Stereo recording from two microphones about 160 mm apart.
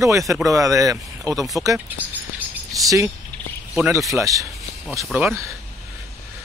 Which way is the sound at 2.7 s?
20° right (ahead or behind).